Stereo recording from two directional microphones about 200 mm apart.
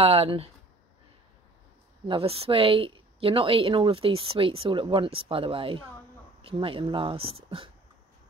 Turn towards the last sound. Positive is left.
turn(degrees=-25)  # may be behind; listen again after turning